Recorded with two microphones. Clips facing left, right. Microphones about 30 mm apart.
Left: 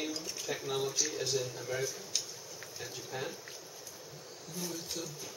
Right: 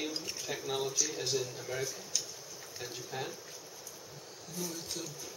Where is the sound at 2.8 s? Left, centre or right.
Centre.